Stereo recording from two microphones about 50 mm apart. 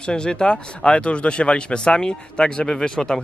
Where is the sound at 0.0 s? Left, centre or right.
Centre.